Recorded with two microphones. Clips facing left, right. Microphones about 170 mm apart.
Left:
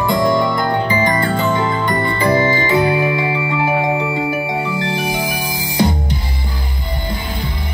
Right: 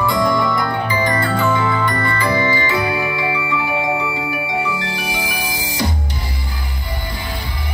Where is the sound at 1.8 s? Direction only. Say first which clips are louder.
Left 2 dB; 20° left (ahead or behind).